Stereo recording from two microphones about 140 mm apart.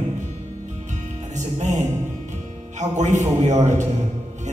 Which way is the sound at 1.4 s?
60° right (ahead or behind).